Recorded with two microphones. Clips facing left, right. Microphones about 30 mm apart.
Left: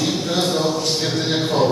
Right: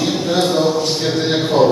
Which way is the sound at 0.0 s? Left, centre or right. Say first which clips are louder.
Right 4 dB; centre.